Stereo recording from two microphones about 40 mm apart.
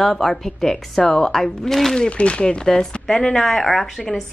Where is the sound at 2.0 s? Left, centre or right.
Left; by 3.9 s centre.